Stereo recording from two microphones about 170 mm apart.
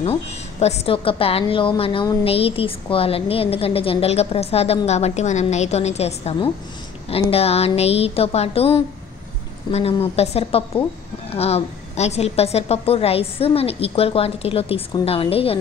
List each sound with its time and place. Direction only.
0.0 s a woman's voice: 40° left (ahead or behind)